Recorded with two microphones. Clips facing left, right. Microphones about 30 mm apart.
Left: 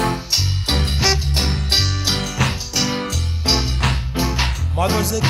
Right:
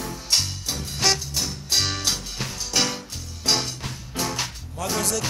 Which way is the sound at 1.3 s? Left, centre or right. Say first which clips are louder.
Left 6 dB; left.